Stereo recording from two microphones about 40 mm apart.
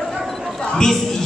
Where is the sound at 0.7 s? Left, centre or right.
Centre.